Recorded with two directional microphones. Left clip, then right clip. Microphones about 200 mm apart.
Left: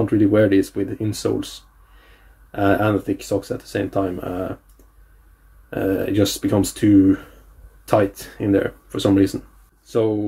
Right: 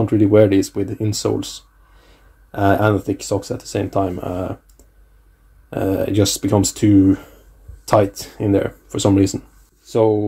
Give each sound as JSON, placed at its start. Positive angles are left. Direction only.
{"t": 0.0, "sound": "speech", "side_deg": -30}
{"t": 2.5, "sound": "speech", "side_deg": -30}
{"t": 5.7, "sound": "speech", "side_deg": -30}